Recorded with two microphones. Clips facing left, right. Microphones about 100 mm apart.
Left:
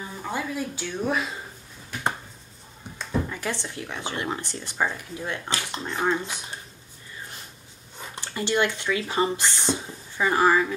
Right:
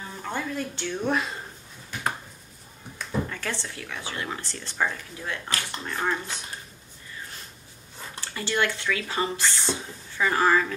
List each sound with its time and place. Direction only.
0.1 s speech: 10° left (ahead or behind)
3.0 s speech: 15° left (ahead or behind)
8.0 s speech: 20° left (ahead or behind)